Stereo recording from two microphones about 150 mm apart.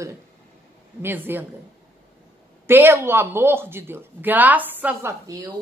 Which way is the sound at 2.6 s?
15° right (ahead or behind).